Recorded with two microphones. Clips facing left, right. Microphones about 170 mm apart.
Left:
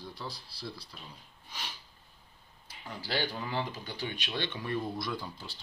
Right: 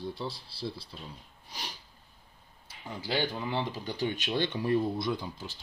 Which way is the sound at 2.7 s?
20° right (ahead or behind).